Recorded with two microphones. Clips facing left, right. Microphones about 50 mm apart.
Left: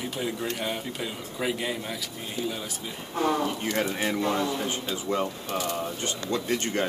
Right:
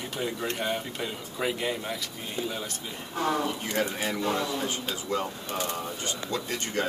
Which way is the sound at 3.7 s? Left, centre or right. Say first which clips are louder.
Left 1 dB; left.